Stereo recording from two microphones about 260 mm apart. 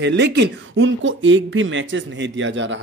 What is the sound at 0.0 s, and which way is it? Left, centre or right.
Speech, right.